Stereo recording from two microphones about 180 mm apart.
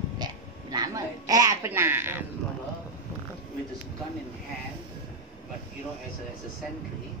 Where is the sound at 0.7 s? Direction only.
20° right (ahead or behind).